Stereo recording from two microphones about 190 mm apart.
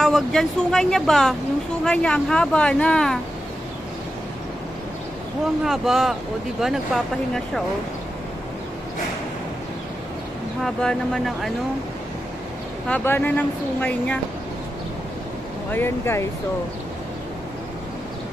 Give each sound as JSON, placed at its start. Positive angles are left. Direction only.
{"t": 0.0, "sound": "speech", "side_deg": 0}
{"t": 5.6, "sound": "speech", "side_deg": 0}
{"t": 10.6, "sound": "speech", "side_deg": 0}
{"t": 12.8, "sound": "speech", "side_deg": 10}
{"t": 15.7, "sound": "speech", "side_deg": 10}